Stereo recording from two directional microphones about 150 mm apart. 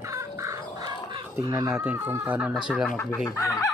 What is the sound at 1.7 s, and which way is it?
Speech, 10° right (ahead or behind).